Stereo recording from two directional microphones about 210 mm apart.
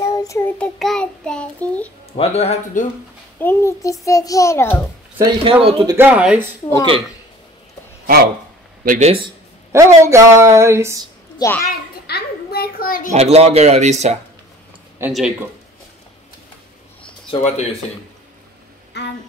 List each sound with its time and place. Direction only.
0.0 s child singing: 15° left (ahead or behind)
0.7 s child singing: centre (ahead or behind)
2.1 s a man's voice: 30° left (ahead or behind)
3.3 s a child's voice: 10° left (ahead or behind)
5.2 s speech: 25° right (ahead or behind)
5.9 s speech: 5° right (ahead or behind)
8.8 s speech: 35° right (ahead or behind)
9.7 s speech: 15° right (ahead or behind)
11.3 s a child's voice: 10° left (ahead or behind)
12.1 s a child's voice: 45° left (ahead or behind)
13.1 s speech: 30° right (ahead or behind)
15.0 s child singing: 5° right (ahead or behind)
17.3 s speech: 30° left (ahead or behind)
18.9 s a sound: 55° left (ahead or behind)